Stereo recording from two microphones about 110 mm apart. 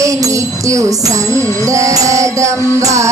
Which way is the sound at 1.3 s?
30° right (ahead or behind).